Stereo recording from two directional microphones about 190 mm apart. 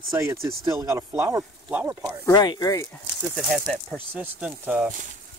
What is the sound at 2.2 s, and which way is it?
Speech, 20° left (ahead or behind).